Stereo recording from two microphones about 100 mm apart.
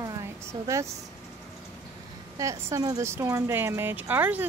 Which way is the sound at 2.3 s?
35° right (ahead or behind).